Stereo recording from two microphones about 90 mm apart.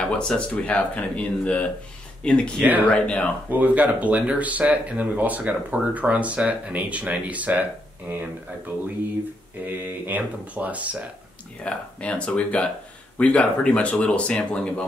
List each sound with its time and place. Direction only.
0.0 s speech: 10° left (ahead or behind)
3.4 s speech: 20° right (ahead or behind)
9.7 s speech: 25° right (ahead or behind)
11.6 s speech: 15° left (ahead or behind)